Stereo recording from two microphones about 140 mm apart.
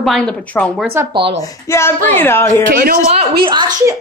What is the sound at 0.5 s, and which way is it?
Speech, 20° left (ahead or behind).